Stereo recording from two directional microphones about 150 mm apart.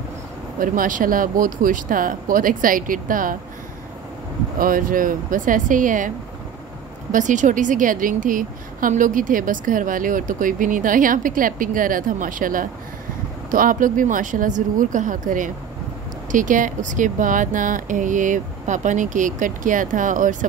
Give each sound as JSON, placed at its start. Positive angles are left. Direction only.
{"t": 0.6, "sound": "speech", "side_deg": -65}
{"t": 4.6, "sound": "a woman's voice", "side_deg": -70}